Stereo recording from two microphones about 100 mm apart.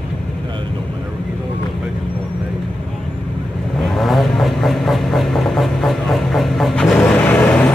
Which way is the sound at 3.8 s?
Centre (ahead or behind).